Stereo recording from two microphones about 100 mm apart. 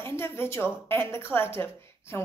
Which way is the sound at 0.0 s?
25° left (ahead or behind).